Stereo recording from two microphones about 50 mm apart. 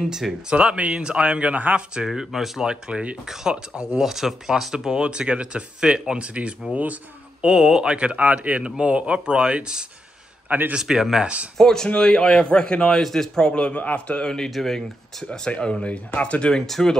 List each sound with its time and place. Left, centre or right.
0.0 s speech: centre
0.5 s speech: right
2.0 s speech: centre
2.7 s speech: right; by 4.7 s centre
4.7 s speech: centre
7.4 s speech: centre
11.5 s speech: centre
14.5 s speech: centre
15.2 s speech: centre
16.6 s speech: centre